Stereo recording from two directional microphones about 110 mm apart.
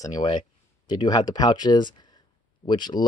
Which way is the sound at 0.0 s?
40° left (ahead or behind).